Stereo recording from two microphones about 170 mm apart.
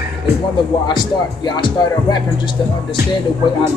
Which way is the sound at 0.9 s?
25° left (ahead or behind).